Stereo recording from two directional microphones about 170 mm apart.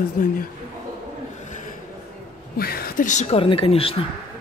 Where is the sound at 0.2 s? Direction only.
55° left (ahead or behind).